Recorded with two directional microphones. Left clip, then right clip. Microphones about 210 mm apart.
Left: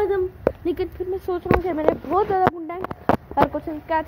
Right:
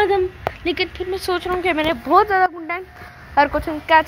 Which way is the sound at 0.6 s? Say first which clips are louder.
Right 4 dB; 20° left (ahead or behind).